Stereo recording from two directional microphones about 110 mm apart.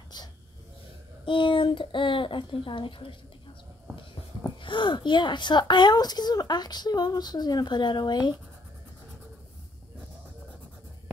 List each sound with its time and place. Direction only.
1.2 s a child's voice: 50° left (ahead or behind)
4.6 s speech: 50° left (ahead or behind)